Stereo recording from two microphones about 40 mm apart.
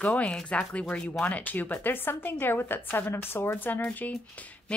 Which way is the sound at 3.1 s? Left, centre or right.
Left.